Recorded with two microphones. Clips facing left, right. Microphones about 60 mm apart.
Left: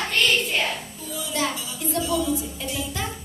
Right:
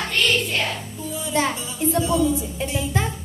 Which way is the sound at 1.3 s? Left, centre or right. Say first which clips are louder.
Right 4 dB; right.